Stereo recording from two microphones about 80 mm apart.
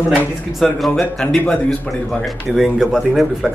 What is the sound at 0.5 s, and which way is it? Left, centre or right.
Speech, centre.